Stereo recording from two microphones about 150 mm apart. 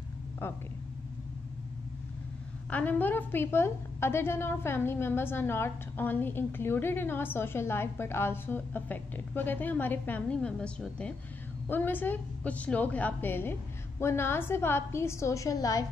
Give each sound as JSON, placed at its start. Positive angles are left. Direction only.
{"t": 2.7, "sound": "a woman's voice", "side_deg": 10}